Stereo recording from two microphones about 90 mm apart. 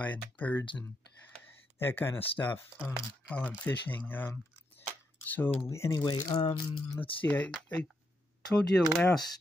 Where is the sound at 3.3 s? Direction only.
15° left (ahead or behind).